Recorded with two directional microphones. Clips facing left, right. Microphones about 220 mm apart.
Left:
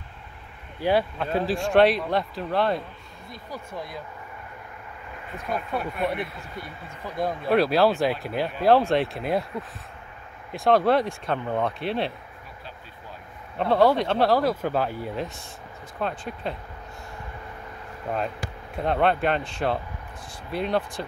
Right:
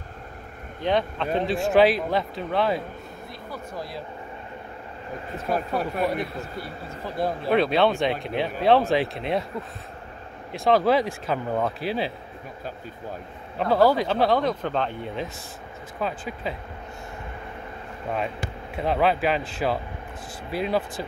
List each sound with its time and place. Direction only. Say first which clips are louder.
0.7 s speech: left 1 dB; 10° left (ahead or behind)
5.1 s speech: right 4 dB; 35° right (ahead or behind)
7.2 s speech: even; 5° right (ahead or behind)
13.6 s speech: even; centre (ahead or behind)
18.8 s speech: even; centre (ahead or behind)